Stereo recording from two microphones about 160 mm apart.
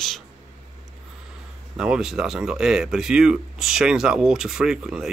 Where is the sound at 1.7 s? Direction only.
5° right (ahead or behind).